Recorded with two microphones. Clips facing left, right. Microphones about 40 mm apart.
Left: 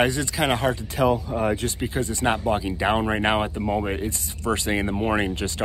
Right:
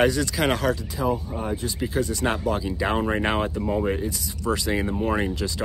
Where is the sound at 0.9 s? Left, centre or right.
Left.